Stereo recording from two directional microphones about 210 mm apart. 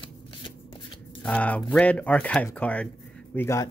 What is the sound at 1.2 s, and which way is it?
Speech, 5° left (ahead or behind).